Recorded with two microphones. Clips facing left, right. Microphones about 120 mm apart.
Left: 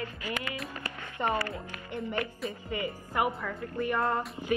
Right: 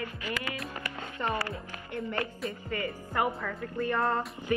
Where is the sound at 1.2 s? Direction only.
20° left (ahead or behind).